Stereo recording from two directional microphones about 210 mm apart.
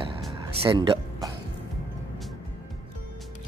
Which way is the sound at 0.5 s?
25° right (ahead or behind).